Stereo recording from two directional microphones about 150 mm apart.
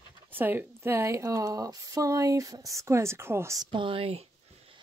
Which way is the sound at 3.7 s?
35° right (ahead or behind).